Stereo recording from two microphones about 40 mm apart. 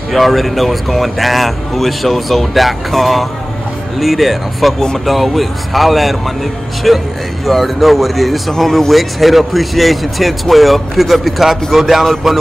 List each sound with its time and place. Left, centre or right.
0.1 s speech: centre